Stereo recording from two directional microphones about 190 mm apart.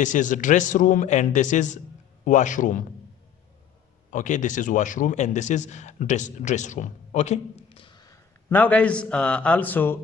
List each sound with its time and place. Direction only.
0.0 s a man's voice: 40° left (ahead or behind)
4.1 s speech: 40° left (ahead or behind); by 8.1 s 25° left (ahead or behind)
8.5 s a man's voice: 10° left (ahead or behind)